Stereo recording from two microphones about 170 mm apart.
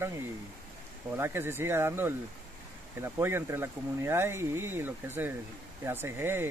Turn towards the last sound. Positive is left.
turn(degrees=-15)  # may be behind; listen again after turning